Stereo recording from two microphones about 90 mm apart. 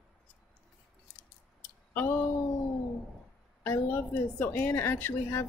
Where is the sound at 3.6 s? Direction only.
20° left (ahead or behind).